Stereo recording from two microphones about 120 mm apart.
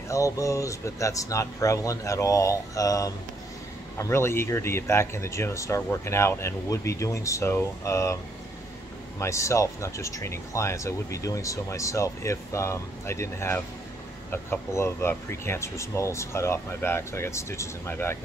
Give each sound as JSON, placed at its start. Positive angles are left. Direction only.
{"t": 0.1, "sound": "speech", "side_deg": 25}
{"t": 9.2, "sound": "speech", "side_deg": 25}